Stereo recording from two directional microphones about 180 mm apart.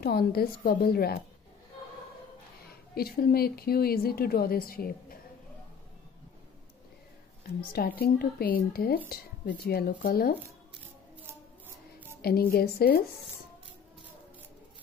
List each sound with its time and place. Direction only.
0.0 s speech: 60° left (ahead or behind)
2.7 s speech: 60° left (ahead or behind)
7.7 s speech: 60° left (ahead or behind)
12.2 s speech: 60° left (ahead or behind)